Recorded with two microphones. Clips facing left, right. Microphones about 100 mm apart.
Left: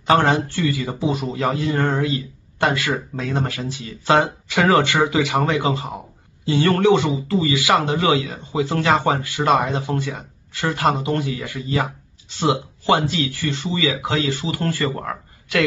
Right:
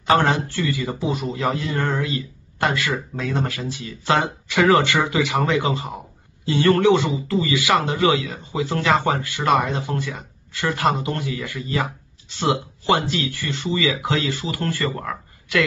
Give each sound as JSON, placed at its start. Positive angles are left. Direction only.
{"t": 0.3, "sound": "speech", "side_deg": 30}